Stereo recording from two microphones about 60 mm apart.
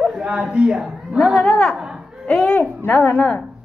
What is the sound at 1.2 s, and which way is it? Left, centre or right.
Speech, centre.